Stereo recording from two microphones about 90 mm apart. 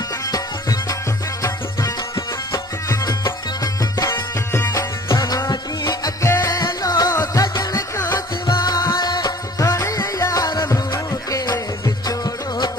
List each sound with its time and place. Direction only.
0.3 s music: 40° left (ahead or behind)
2.5 s music: 40° left (ahead or behind)
6.2 s music: 35° left (ahead or behind)